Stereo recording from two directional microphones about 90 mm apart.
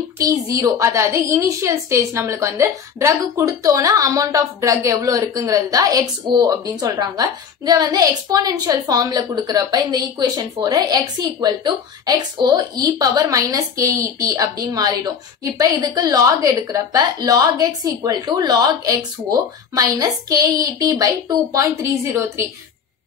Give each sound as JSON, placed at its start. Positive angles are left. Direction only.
{"t": 0.2, "sound": "a woman's voice", "side_deg": -40}